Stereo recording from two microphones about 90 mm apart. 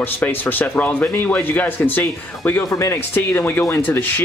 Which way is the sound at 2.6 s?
35° left (ahead or behind).